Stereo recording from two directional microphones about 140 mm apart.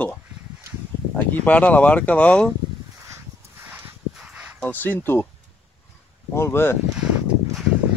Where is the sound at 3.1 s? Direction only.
15° right (ahead or behind).